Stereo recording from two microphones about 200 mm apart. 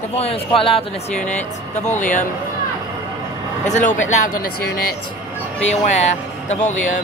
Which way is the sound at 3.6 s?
35° left (ahead or behind).